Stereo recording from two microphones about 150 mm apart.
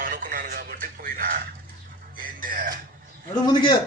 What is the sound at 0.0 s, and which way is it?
Radio, 70° right (ahead or behind).